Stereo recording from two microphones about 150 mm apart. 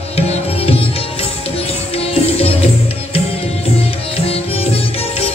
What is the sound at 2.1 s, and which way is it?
Music, 40° left (ahead or behind).